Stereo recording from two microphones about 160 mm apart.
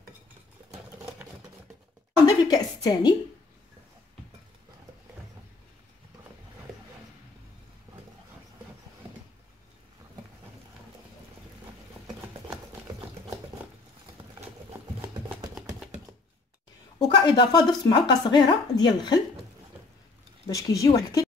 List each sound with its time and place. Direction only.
2.2 s a woman's voice: 25° left (ahead or behind)
17.0 s speech: 25° left (ahead or behind)
20.4 s speech: 20° left (ahead or behind)